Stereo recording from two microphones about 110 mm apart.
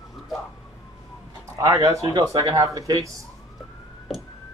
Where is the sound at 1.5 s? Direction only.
30° right (ahead or behind).